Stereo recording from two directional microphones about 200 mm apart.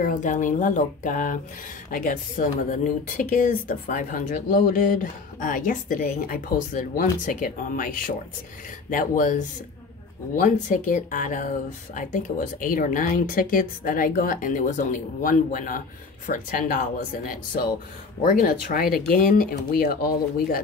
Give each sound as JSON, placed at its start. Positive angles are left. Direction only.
{"t": 0.0, "sound": "speech", "side_deg": 40}
{"t": 18.2, "sound": "speech", "side_deg": 45}